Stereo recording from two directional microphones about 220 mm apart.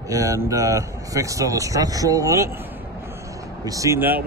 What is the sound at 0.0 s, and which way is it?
Speech, 15° right (ahead or behind).